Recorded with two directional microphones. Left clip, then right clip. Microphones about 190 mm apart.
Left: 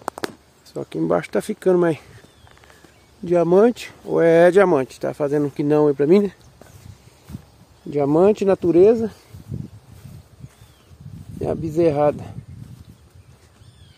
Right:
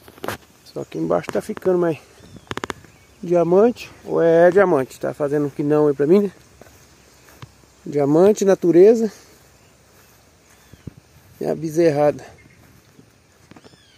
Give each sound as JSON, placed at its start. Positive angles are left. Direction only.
{"t": 0.7, "sound": "speech", "side_deg": 15}
{"t": 3.3, "sound": "speech", "side_deg": 5}
{"t": 3.5, "sound": "speech", "side_deg": 15}
{"t": 4.7, "sound": "speech", "side_deg": 10}
{"t": 7.9, "sound": "speech", "side_deg": 0}
{"t": 11.4, "sound": "speech", "side_deg": 0}